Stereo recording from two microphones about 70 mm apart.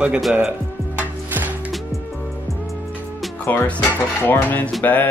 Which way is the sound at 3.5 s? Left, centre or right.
Left.